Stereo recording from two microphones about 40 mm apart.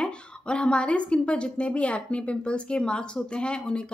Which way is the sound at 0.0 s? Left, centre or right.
Left.